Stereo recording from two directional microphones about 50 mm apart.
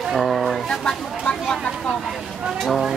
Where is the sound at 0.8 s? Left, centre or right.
Centre.